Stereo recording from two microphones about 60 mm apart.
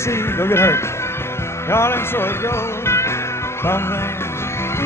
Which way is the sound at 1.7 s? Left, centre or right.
Left.